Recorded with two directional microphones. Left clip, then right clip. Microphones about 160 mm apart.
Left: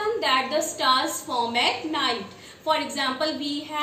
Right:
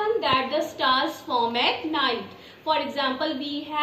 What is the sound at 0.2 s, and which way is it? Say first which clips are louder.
A woman's voice: even; 25° left (ahead or behind).